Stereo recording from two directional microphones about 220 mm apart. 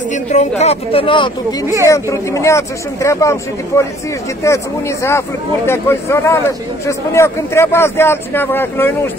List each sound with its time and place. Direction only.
0.1 s speech: 30° left (ahead or behind); by 8.9 s 10° left (ahead or behind)